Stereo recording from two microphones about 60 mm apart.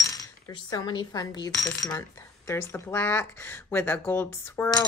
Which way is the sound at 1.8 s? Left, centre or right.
Left.